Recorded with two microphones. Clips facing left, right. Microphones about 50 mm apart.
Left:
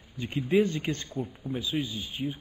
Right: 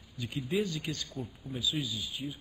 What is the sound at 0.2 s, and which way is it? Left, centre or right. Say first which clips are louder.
A man's voice: left 7 dB; left.